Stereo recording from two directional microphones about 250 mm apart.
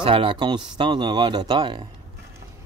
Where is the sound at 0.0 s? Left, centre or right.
Right.